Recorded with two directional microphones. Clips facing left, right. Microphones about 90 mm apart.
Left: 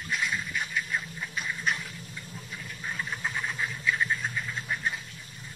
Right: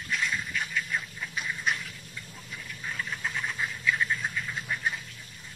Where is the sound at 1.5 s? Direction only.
Centre (ahead or behind).